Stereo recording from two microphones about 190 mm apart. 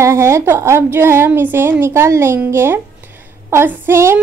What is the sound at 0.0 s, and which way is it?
A woman's voice, 15° right (ahead or behind).